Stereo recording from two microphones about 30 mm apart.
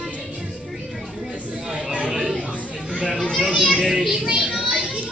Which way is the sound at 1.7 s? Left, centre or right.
Right.